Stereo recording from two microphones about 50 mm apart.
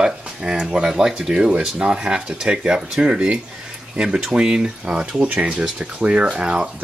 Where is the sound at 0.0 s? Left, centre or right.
Centre.